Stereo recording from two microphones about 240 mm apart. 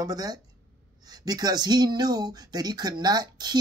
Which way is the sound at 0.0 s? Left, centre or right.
Centre.